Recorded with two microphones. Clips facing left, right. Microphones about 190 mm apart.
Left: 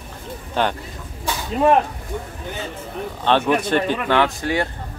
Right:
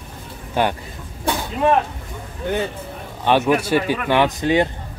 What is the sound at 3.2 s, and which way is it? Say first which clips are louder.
Speech: right 1 dB; 10° right (ahead or behind).